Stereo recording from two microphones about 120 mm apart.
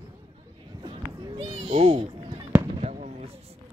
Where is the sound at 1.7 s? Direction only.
55° right (ahead or behind).